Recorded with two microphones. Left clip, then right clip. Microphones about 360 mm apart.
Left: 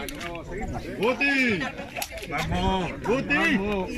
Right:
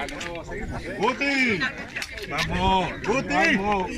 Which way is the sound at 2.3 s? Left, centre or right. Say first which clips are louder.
Right 4 dB; centre.